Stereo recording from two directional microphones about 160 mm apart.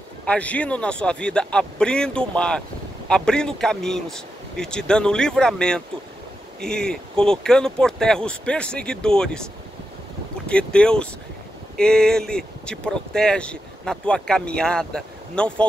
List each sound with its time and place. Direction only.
0.3 s speech: 10° left (ahead or behind)
10.5 s speech: 5° left (ahead or behind)